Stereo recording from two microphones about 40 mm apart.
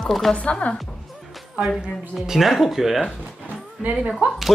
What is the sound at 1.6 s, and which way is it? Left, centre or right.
Speech, right.